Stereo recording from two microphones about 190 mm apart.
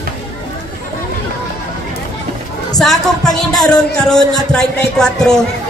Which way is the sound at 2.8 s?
Centre (ahead or behind).